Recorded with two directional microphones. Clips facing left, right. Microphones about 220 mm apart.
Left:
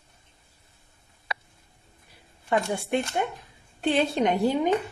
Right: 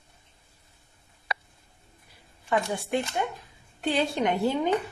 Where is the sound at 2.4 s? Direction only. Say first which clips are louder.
Left 2 dB; 25° left (ahead or behind).